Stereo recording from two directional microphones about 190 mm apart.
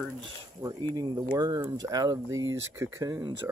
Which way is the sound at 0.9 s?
20° right (ahead or behind).